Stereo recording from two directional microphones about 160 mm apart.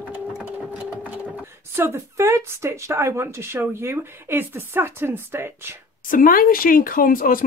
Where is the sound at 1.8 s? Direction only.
15° right (ahead or behind).